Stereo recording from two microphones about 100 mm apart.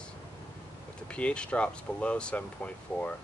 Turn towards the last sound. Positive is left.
turn(degrees=15)  # may be behind; listen again after turning